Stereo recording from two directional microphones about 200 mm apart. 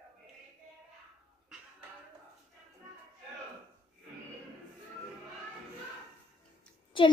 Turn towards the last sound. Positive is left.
turn(degrees=25)  # may be behind; listen again after turning